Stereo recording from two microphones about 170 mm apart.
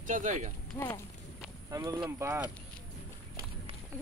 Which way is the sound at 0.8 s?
15° left (ahead or behind).